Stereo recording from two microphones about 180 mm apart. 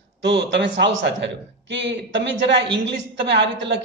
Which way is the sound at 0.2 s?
70° right (ahead or behind).